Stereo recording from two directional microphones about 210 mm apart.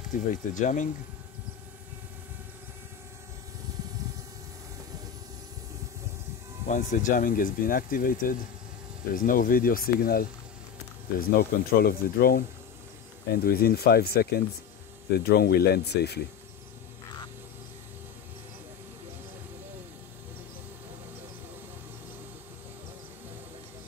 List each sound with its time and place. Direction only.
0.1 s speech: 35° left (ahead or behind)
6.7 s speech: 35° left (ahead or behind)